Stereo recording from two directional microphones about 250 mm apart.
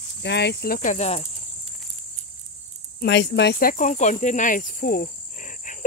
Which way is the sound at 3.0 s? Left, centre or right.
Left.